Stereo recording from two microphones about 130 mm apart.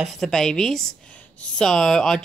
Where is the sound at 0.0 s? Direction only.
5° left (ahead or behind).